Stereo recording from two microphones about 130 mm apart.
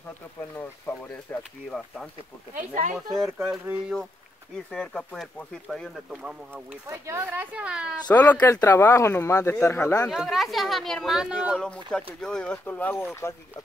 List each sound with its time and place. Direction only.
0.6 s speech: 15° left (ahead or behind)
2.5 s speech: 75° right (ahead or behind)
3.2 s speech: 5° right (ahead or behind)
4.6 s a woman's voice: 5° left (ahead or behind)
6.9 s a woman's voice: 20° right (ahead or behind)
8.1 s speech: 10° left (ahead or behind)
10.1 s speech: centre (ahead or behind)
11.6 s speech: 5° left (ahead or behind)